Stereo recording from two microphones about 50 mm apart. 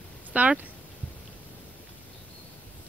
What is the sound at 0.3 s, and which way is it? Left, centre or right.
Speech, right.